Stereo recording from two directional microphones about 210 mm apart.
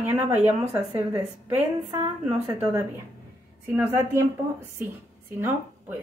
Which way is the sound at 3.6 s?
10° right (ahead or behind).